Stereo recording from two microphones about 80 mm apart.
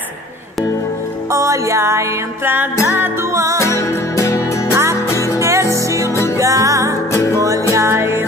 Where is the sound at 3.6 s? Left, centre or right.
Left.